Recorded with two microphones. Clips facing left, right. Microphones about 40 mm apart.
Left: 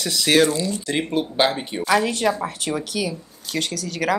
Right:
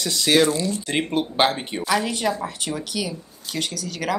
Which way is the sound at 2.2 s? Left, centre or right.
Left.